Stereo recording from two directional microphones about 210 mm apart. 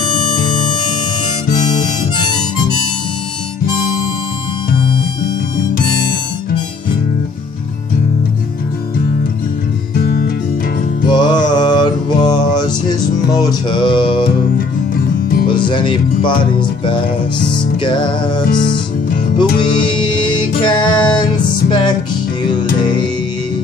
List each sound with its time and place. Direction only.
9.9 s music: 45° left (ahead or behind)
11.1 s mantra: 20° left (ahead or behind)
15.4 s music: 20° left (ahead or behind)
18.6 s music: 40° left (ahead or behind)
19.3 s music: 25° left (ahead or behind)